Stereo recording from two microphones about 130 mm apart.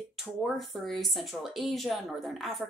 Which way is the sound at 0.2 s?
Centre (ahead or behind).